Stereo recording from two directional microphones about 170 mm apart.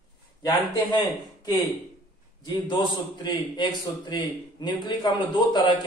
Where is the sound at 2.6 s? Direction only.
25° left (ahead or behind).